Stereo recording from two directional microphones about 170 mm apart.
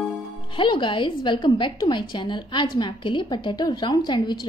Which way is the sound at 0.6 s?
30° left (ahead or behind).